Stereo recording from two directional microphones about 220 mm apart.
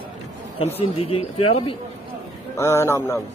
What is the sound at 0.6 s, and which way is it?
Speech, 25° left (ahead or behind).